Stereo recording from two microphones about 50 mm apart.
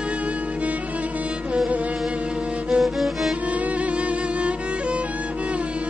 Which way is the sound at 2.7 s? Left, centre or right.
Centre.